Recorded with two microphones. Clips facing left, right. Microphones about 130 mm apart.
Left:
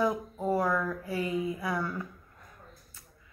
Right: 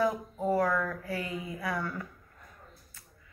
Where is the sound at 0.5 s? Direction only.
15° left (ahead or behind).